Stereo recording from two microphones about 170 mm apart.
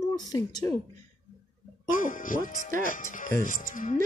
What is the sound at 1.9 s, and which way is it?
Speech, 50° left (ahead or behind).